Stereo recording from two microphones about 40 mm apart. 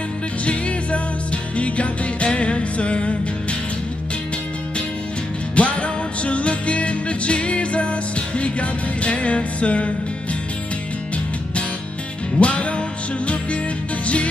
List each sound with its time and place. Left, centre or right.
0.5 s music: left
5.6 s music: left
12.4 s music: left